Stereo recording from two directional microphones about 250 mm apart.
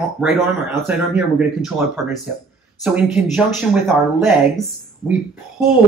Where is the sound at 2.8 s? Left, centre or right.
Centre.